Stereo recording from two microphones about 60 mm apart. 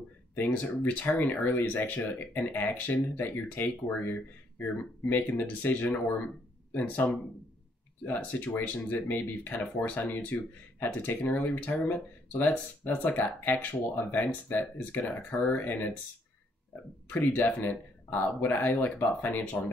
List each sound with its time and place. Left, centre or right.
0.5 s speech: left
17.1 s speech: left